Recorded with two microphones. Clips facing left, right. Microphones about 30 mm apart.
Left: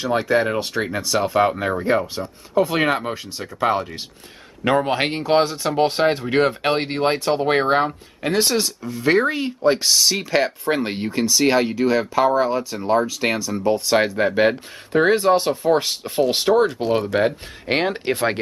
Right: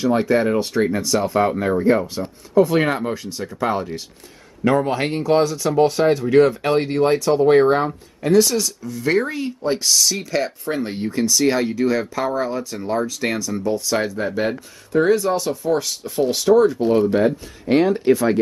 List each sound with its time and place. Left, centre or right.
0.3 s speech: centre
4.6 s speech: left
16.8 s speech: left